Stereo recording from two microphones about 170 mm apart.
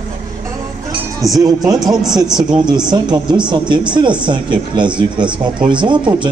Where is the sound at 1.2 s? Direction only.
Centre (ahead or behind).